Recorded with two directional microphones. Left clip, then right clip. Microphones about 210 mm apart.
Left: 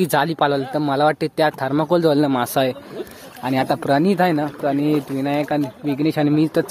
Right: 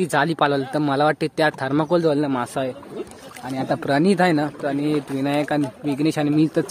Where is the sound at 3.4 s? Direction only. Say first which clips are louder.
Left 8 dB; 45° left (ahead or behind).